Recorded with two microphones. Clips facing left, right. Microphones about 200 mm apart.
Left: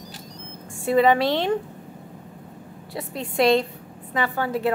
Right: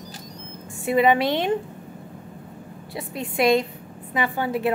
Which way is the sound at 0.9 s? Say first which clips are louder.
Left 1 dB; 15° right (ahead or behind).